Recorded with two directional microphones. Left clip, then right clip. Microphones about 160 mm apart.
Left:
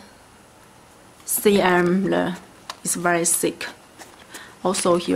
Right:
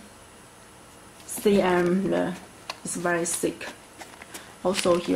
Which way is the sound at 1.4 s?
40° left (ahead or behind).